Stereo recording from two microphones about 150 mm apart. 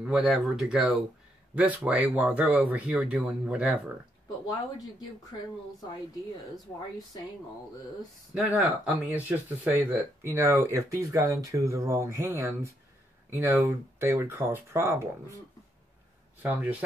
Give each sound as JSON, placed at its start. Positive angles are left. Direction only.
{"t": 0.0, "sound": "a man's voice", "side_deg": -5}
{"t": 4.5, "sound": "speech", "side_deg": 25}
{"t": 8.4, "sound": "speech", "side_deg": -10}